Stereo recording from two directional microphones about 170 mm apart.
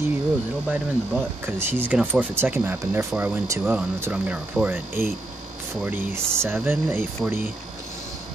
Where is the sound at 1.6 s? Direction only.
10° right (ahead or behind).